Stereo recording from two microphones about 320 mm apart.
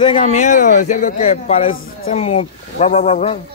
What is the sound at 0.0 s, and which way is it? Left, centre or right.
A man's voice, centre.